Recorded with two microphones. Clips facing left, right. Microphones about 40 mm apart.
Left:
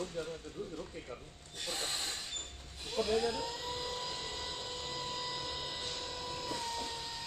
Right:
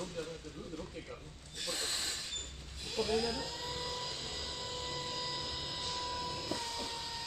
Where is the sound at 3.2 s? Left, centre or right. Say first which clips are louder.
Left 2 dB; left.